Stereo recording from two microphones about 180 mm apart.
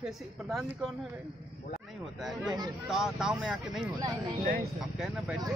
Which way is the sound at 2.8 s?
5° right (ahead or behind).